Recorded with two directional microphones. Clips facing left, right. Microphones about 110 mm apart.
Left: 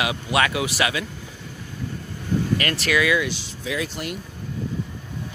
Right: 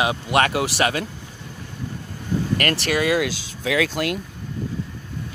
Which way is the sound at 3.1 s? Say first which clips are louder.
Right 2 dB; 80° right.